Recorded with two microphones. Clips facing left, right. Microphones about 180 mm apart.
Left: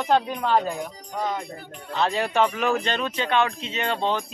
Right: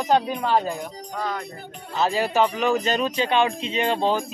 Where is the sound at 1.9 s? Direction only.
5° right (ahead or behind).